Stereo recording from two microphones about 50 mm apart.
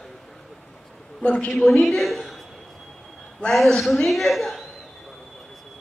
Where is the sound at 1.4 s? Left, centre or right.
Centre.